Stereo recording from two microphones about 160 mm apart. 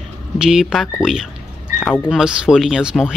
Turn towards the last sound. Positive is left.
turn(degrees=-5)  # may be behind; listen again after turning